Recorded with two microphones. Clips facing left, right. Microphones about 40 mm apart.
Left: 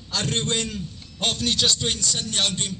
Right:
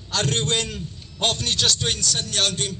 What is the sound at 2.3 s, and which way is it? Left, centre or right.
Speech, right.